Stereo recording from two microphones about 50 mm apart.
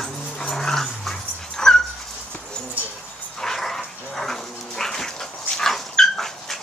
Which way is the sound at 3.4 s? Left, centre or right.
Centre.